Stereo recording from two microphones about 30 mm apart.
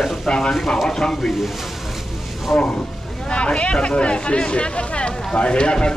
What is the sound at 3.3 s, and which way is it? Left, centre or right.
Speech, left.